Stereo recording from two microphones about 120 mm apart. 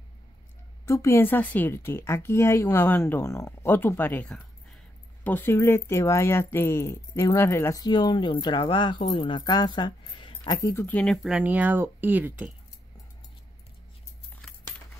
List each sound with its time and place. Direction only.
0.8 s a woman's voice: 20° left (ahead or behind)
7.8 s speech: 35° left (ahead or behind)
10.6 s speech: 20° left (ahead or behind)
11.2 s speech: 10° right (ahead or behind)
14.4 s keys jangling: 5° left (ahead or behind)